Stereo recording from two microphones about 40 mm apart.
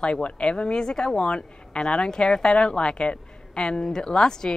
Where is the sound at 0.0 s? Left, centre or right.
Left.